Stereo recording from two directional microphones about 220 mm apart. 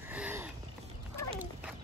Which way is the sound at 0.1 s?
10° right (ahead or behind).